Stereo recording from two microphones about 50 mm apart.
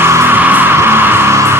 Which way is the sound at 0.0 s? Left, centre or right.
Right.